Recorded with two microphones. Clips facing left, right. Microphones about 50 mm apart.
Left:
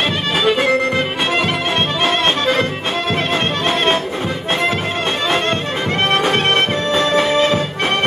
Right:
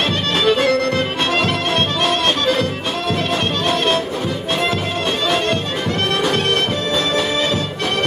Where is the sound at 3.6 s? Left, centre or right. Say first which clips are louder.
Left 1 dB; left.